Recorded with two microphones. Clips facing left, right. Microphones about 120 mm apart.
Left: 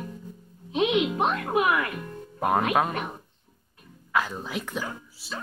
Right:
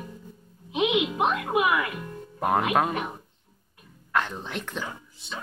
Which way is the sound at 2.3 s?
Centre (ahead or behind).